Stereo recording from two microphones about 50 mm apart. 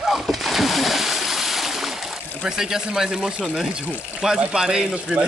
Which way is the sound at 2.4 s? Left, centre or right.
Centre.